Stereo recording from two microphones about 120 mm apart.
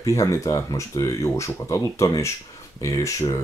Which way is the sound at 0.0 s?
25° left (ahead or behind).